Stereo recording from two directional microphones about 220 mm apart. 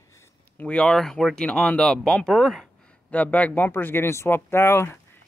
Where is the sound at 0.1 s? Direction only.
10° left (ahead or behind).